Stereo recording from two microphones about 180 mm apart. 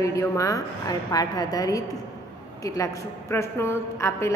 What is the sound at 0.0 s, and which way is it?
A woman's voice, 15° left (ahead or behind).